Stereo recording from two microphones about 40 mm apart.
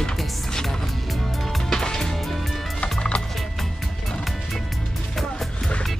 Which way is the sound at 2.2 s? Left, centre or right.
Centre.